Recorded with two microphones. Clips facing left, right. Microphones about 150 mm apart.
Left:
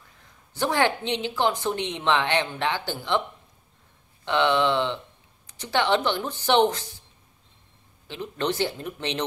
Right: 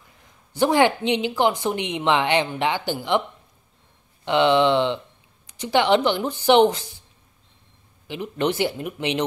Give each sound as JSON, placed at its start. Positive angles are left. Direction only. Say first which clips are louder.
{"t": 0.5, "sound": "speech", "louder": "right 5 dB", "side_deg": -15}
{"t": 4.2, "sound": "speech", "louder": "right 4 dB", "side_deg": -15}
{"t": 8.1, "sound": "speech", "louder": "right 4 dB", "side_deg": -15}